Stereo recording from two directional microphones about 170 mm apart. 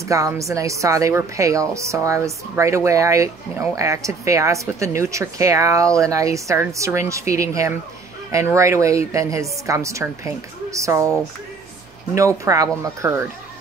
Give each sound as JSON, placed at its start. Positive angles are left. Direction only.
{"t": 0.0, "sound": "a woman's voice", "side_deg": -20}
{"t": 12.2, "sound": "speech", "side_deg": -20}